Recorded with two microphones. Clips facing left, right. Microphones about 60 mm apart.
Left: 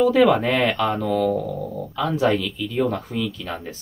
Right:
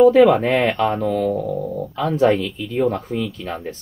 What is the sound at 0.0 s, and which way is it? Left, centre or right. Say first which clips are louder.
Speech: right 5 dB; right.